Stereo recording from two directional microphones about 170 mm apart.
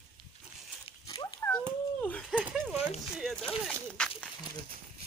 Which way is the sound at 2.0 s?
5° left (ahead or behind).